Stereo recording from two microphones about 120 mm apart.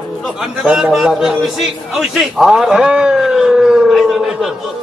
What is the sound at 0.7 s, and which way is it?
A man's voice, 5° right (ahead or behind).